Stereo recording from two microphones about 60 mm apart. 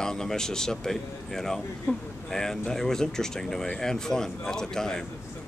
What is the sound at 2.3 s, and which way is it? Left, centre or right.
Speech, centre.